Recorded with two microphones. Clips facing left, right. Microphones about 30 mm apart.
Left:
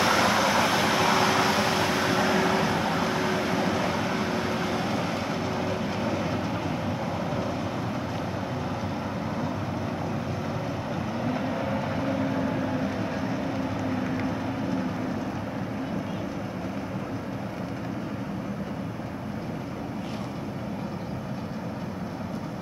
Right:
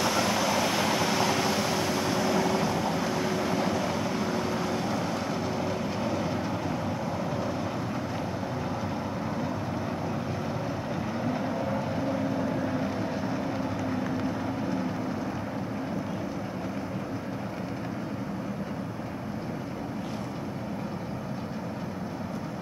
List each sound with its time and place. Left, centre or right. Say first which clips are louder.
0.0 s vehicle: left 4 dB; left; by 6.4 s centre
11.2 s vehicle: left 1 dB; centre
14.2 s vehicle: left 1 dB; centre